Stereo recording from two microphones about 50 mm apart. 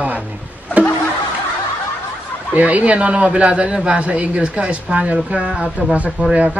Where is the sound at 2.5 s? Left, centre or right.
Right.